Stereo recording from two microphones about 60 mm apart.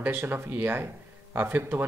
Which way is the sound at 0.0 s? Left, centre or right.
Right.